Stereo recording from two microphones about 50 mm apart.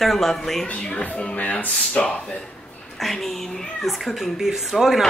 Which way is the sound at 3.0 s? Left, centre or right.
Centre.